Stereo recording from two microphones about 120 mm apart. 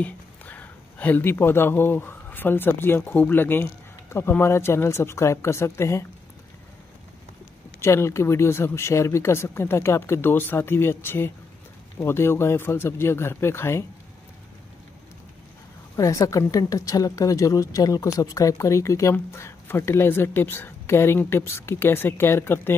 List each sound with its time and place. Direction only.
0.0 s speech: 15° left (ahead or behind)
7.8 s speech: 25° left (ahead or behind)
16.0 s speech: 25° left (ahead or behind)